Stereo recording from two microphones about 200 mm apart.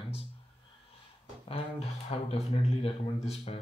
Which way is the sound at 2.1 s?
30° left (ahead or behind).